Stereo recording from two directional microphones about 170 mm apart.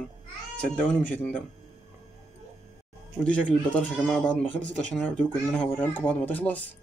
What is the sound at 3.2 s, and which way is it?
Speech, 5° left (ahead or behind).